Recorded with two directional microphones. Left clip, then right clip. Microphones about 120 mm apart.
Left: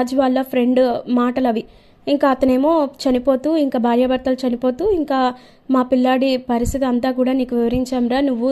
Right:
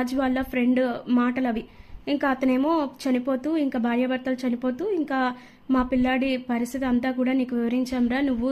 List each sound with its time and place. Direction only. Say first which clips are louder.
0.0 s speech: left 8 dB; 35° left (ahead or behind)